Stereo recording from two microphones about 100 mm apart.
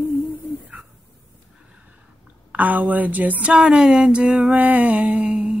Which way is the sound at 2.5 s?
15° right (ahead or behind).